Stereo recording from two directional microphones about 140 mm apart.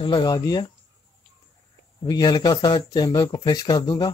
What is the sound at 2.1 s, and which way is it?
Speech, 30° left (ahead or behind).